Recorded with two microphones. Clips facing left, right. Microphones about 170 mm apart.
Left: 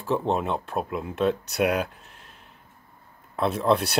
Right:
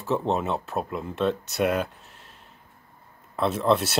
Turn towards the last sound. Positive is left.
turn(degrees=0)  # may be behind; listen again after turning